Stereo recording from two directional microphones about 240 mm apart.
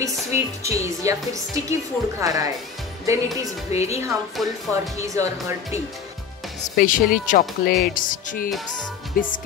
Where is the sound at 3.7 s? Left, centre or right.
Left.